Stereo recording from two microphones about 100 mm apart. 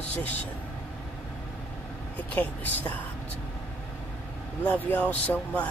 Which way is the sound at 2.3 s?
15° left (ahead or behind).